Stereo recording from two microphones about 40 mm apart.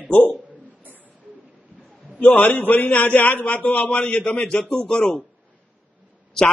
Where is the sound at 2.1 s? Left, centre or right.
Left.